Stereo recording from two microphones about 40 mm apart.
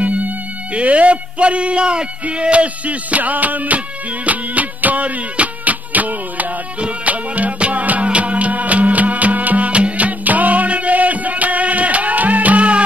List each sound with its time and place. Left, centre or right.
0.0 s music: right
0.7 s speech: right
4.3 s music: right
9.7 s music: right